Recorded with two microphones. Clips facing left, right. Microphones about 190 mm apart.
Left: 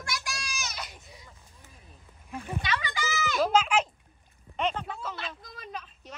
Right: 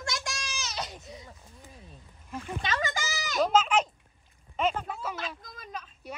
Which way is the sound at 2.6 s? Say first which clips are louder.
Right 2 dB; 45° right (ahead or behind).